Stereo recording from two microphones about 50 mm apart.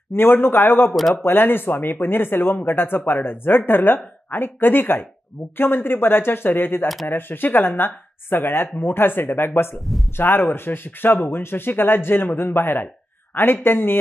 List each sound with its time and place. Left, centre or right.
0.1 s speech: left
0.9 s speech: centre
1.2 s a man's voice: left